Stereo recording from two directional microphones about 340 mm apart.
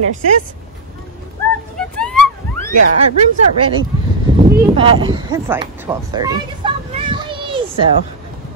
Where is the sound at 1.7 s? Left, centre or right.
Centre.